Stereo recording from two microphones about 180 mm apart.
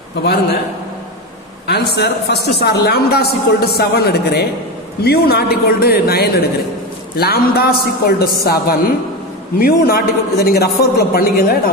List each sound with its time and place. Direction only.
0.2 s a man's voice: 65° left (ahead or behind)
1.7 s a man's voice: 65° left (ahead or behind)